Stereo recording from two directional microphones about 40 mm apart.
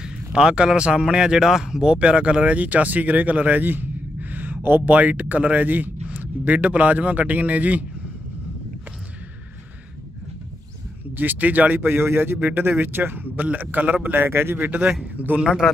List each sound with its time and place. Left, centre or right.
0.0 s speech: centre; by 4.9 s right
4.9 s speech: right
11.1 s speech: right
11.8 s a man's voice: right
14.1 s a man's voice: right
15.1 s speech: right
15.6 s a man's voice: centre